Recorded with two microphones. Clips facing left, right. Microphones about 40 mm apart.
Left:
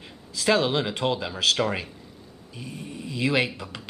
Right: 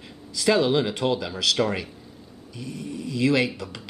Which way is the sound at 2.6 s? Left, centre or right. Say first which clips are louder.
Right 4 dB; left.